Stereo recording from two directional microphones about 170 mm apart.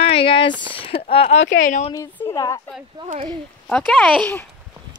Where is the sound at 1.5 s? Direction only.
50° left (ahead or behind).